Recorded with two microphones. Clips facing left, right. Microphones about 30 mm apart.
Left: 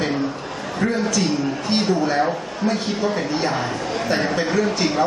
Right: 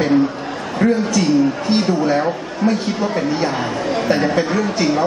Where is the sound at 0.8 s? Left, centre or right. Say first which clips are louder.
Right 6 dB; centre.